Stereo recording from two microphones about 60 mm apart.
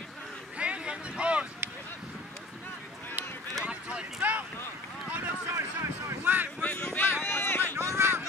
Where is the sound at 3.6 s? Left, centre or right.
Centre.